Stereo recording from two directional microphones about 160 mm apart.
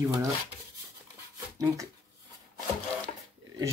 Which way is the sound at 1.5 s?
20° right (ahead or behind).